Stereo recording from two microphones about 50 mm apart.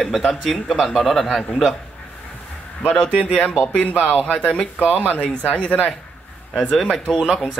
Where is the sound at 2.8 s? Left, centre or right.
Centre.